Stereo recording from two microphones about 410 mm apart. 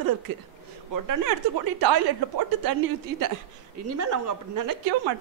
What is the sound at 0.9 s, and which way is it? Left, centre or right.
A woman's voice, right.